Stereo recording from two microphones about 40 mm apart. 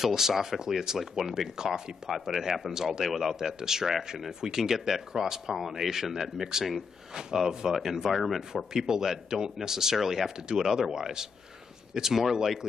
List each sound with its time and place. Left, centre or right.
0.0 s speech: centre
8.8 s speech: centre